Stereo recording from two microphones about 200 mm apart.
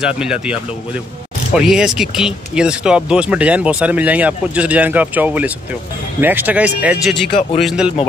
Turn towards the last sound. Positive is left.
turn(degrees=-5)  # may be behind; listen again after turning